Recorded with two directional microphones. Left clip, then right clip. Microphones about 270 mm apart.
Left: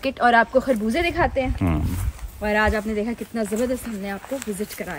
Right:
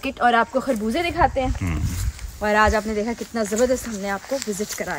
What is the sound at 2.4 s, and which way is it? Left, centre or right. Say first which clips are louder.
Speech: right 3 dB; centre.